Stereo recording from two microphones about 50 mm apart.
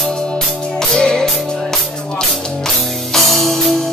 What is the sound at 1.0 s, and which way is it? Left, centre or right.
Music, centre.